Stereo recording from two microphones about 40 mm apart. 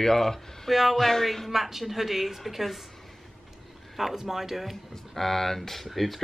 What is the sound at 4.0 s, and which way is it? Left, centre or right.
Speech, centre.